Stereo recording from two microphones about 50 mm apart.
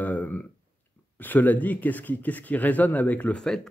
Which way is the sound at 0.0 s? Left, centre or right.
Left.